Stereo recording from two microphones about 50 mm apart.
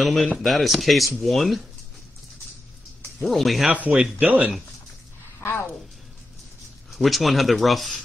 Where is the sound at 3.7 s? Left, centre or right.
Right.